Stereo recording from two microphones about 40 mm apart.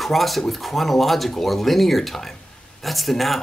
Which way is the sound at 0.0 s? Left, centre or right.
Centre.